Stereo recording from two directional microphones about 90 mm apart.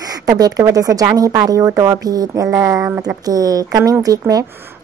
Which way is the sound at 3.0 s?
45° right (ahead or behind).